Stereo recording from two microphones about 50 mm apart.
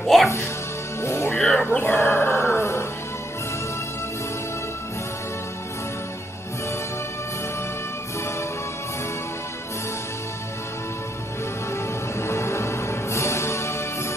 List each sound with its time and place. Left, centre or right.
0.0 s speech: centre
1.0 s music: left
1.4 s a sound: centre
1.8 s music: left
11.7 s music: left